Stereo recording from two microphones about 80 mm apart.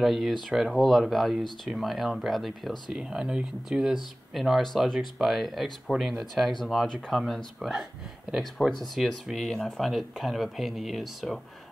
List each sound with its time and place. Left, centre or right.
0.0 s speech: centre